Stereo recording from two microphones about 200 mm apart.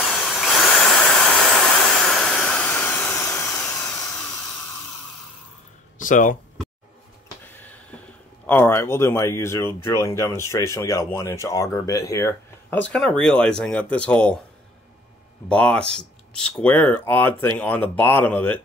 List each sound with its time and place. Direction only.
0.0 s a sound: centre (ahead or behind)
5.9 s speech: 40° left (ahead or behind)
8.5 s speech: 10° left (ahead or behind)
15.4 s speech: 5° left (ahead or behind)